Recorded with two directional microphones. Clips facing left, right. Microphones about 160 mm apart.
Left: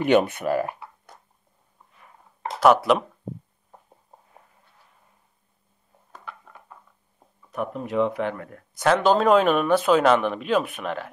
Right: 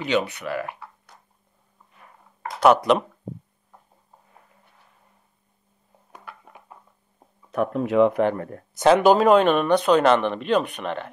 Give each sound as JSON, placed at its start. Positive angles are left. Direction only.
{"t": 0.0, "sound": "speech", "side_deg": 50}
{"t": 2.6, "sound": "speech", "side_deg": 5}
{"t": 6.1, "sound": "a sound", "side_deg": -15}
{"t": 7.5, "sound": "speech", "side_deg": -90}
{"t": 8.1, "sound": "speech", "side_deg": -45}
{"t": 8.9, "sound": "speech", "side_deg": -10}